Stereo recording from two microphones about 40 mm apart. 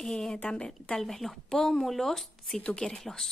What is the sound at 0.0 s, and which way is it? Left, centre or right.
Speech, centre.